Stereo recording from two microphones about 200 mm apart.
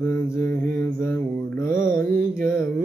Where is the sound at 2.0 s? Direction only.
15° left (ahead or behind).